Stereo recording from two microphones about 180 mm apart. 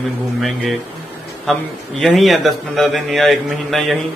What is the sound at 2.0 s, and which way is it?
A man's voice, centre (ahead or behind).